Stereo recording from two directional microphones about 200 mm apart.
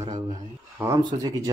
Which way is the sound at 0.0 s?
35° right (ahead or behind).